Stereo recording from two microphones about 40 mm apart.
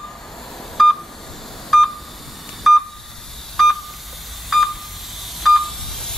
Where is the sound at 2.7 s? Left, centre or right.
Centre.